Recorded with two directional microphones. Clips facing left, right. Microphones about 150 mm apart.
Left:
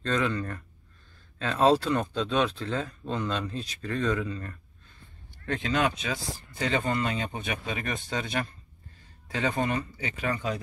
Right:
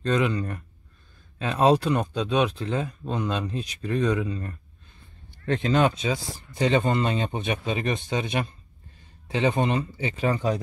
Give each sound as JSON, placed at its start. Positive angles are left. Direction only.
{"t": 0.0, "sound": "speech", "side_deg": -15}
{"t": 5.4, "sound": "speech", "side_deg": -30}